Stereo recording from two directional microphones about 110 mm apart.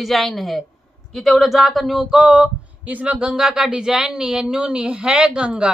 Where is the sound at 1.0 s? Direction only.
Centre (ahead or behind).